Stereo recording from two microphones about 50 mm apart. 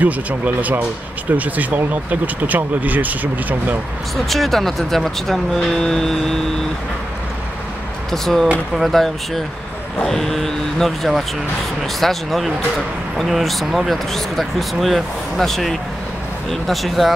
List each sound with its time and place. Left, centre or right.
0.0 s speech: right
4.3 s speech: centre
8.1 s speech: centre